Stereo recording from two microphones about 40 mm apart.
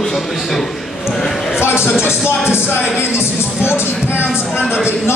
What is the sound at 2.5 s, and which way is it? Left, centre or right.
Music, left.